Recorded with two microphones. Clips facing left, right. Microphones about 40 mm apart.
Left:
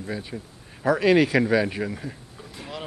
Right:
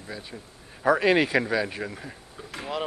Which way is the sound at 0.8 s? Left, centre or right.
Centre.